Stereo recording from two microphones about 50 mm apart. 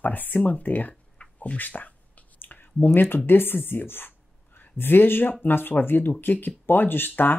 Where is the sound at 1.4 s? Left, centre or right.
Left.